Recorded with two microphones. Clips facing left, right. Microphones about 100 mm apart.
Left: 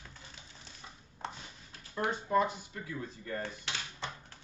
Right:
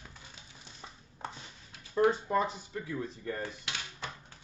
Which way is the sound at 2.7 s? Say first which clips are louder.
Right 4 dB; 25° right (ahead or behind).